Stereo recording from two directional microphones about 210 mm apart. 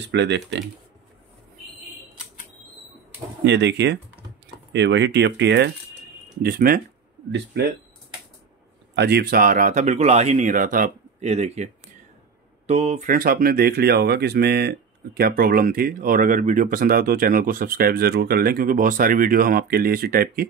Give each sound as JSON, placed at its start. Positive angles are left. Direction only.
{"t": 0.1, "sound": "speech", "side_deg": -55}
{"t": 3.4, "sound": "speech", "side_deg": -55}
{"t": 6.4, "sound": "speech", "side_deg": -45}
{"t": 7.2, "sound": "speech", "side_deg": -55}
{"t": 8.9, "sound": "speech", "side_deg": -50}